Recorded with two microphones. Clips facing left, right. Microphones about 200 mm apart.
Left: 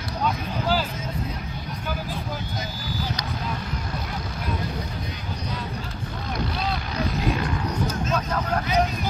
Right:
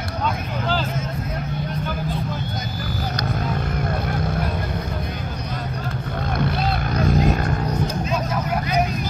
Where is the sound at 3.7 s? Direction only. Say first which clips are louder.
Right 7 dB; 55° right (ahead or behind).